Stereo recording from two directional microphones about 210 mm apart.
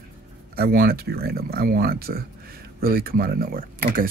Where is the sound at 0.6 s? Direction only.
45° right (ahead or behind).